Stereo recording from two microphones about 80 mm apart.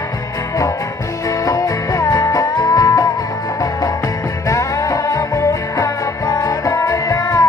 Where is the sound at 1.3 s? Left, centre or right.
Left.